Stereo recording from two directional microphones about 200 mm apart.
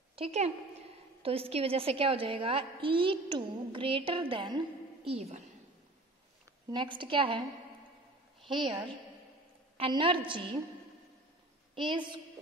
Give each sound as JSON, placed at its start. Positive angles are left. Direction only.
{"t": 0.1, "sound": "a woman's voice", "side_deg": -30}
{"t": 6.7, "sound": "a woman's voice", "side_deg": -25}
{"t": 9.8, "sound": "a woman's voice", "side_deg": -25}
{"t": 11.7, "sound": "a woman's voice", "side_deg": -25}